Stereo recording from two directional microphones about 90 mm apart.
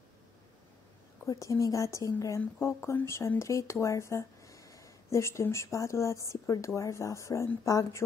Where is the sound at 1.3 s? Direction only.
35° left (ahead or behind).